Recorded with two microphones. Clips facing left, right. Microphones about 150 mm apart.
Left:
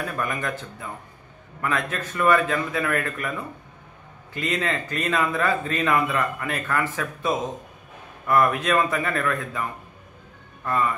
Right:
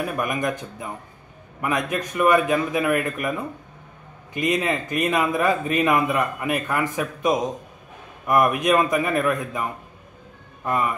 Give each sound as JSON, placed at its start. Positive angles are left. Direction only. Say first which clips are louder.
{"t": 0.0, "sound": "a man's voice", "louder": "right 4 dB", "side_deg": -15}